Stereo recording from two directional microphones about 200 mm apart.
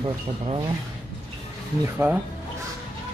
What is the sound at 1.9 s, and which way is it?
Speech, 5° right (ahead or behind).